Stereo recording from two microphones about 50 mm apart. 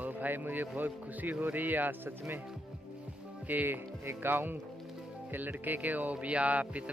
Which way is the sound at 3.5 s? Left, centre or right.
Right.